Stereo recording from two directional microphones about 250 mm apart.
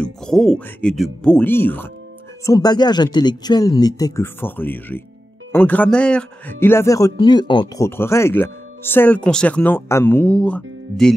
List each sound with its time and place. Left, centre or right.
0.0 s speech: centre